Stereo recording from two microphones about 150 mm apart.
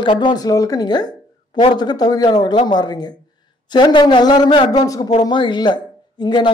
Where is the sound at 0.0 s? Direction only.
30° left (ahead or behind).